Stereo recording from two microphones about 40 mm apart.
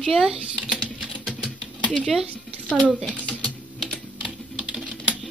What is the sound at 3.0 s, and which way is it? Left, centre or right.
Speech, left.